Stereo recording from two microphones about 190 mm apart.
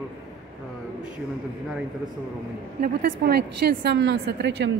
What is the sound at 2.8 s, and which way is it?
A woman's voice, 60° right (ahead or behind).